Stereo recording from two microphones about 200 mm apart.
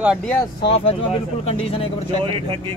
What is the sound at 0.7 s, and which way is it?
Speech, 30° left (ahead or behind).